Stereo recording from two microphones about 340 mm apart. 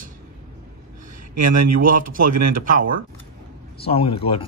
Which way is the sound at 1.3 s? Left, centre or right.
Right.